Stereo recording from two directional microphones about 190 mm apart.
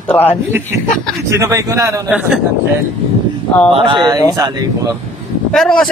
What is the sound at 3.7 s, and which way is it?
Speech, 25° right (ahead or behind).